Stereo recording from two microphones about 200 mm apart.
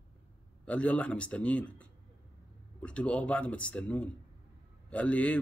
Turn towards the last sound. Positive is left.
turn(degrees=5)  # may be behind; listen again after turning